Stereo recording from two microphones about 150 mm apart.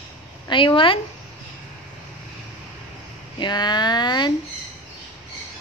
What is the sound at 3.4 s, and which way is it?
Speech, 30° left (ahead or behind).